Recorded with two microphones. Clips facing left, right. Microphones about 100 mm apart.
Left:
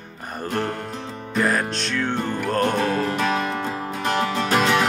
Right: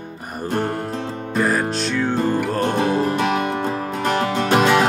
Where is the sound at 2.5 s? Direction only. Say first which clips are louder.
Right 2 dB; 20° right (ahead or behind).